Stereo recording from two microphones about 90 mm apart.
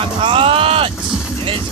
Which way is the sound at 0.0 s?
80° right.